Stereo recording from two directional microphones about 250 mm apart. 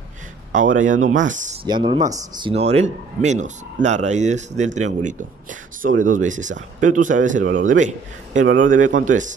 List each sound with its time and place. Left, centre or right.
0.7 s speech: right
1.7 s speech: centre